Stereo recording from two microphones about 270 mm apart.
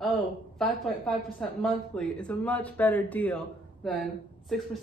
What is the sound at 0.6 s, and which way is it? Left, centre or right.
Speech, centre.